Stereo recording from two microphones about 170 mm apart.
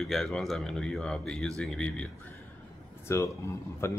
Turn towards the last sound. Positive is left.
turn(degrees=15)  # may be behind; listen again after turning